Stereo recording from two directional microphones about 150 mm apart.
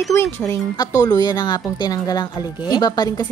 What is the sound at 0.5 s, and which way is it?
A woman's voice, 25° left (ahead or behind).